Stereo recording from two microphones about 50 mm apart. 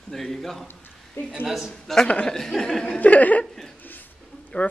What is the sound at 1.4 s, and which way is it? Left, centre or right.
Speech, centre.